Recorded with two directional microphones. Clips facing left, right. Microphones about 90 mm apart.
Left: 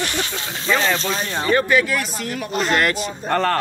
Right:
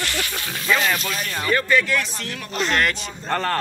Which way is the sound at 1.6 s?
10° left (ahead or behind).